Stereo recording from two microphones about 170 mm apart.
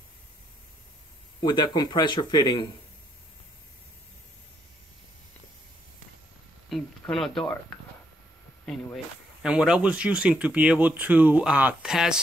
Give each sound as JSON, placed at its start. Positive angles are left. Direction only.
{"t": 1.4, "sound": "speech", "side_deg": 25}
{"t": 6.7, "sound": "a sound", "side_deg": 0}
{"t": 8.6, "sound": "speech", "side_deg": 0}